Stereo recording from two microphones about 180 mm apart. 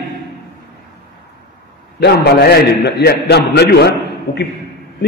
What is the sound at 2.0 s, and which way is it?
A man's voice, 65° left (ahead or behind).